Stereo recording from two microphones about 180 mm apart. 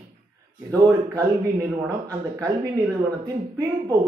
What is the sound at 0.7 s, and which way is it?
Speech, 15° right (ahead or behind).